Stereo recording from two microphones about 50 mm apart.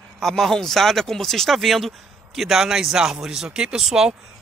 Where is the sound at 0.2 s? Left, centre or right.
Centre.